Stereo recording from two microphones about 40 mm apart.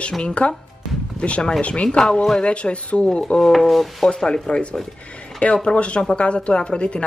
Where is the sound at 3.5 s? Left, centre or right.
Centre.